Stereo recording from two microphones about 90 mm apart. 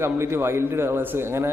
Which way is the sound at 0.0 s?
30° right (ahead or behind).